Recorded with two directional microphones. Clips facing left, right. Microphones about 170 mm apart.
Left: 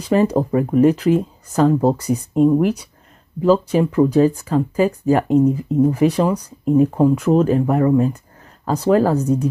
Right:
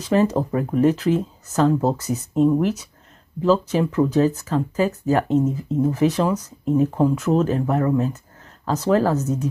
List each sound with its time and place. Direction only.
0.1 s speech: 10° left (ahead or behind)
9.2 s speech: 35° left (ahead or behind)